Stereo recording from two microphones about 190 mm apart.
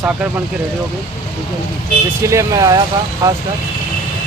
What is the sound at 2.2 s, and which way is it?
Speech, 15° right (ahead or behind).